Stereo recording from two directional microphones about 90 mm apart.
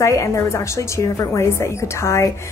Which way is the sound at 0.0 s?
35° left (ahead or behind).